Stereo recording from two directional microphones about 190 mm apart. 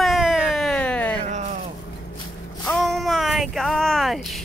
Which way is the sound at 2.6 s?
Centre (ahead or behind).